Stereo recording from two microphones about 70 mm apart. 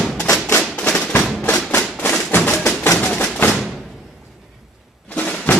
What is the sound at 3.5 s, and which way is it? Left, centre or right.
Thump, centre.